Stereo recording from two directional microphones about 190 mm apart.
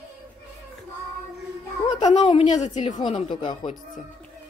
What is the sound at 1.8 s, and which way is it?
Speech, 35° left (ahead or behind).